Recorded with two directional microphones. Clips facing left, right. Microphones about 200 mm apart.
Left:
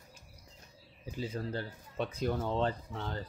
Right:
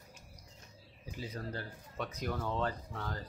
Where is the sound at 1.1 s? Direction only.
30° left (ahead or behind).